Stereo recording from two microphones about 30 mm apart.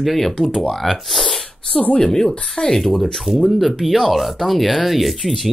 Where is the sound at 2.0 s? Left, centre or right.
Centre.